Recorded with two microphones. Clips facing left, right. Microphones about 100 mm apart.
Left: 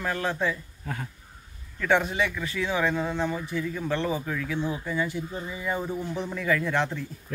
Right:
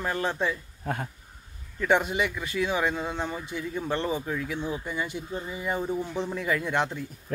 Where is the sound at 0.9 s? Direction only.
55° right (ahead or behind).